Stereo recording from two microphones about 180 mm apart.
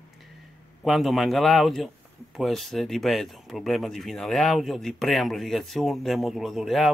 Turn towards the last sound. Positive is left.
turn(degrees=0)  # may be behind; listen again after turning